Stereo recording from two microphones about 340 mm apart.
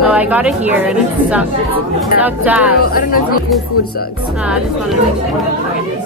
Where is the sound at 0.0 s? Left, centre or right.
Centre.